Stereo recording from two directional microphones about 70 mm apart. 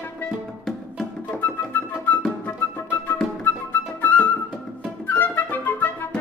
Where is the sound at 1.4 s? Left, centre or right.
Left.